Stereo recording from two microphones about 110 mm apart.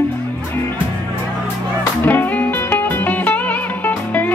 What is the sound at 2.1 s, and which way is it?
Music, 15° left (ahead or behind).